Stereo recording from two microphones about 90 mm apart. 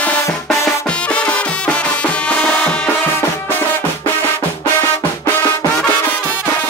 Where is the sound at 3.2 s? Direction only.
20° left (ahead or behind).